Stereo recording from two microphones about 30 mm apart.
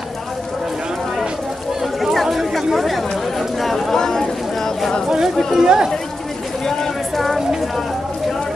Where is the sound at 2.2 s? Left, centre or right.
Centre.